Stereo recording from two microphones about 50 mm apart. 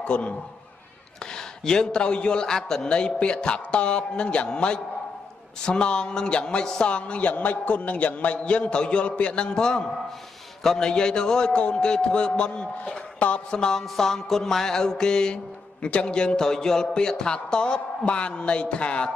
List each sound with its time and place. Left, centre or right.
0.0 s a man's voice: left
1.2 s music: centre
5.7 s a man's voice: centre
9.1 s music: left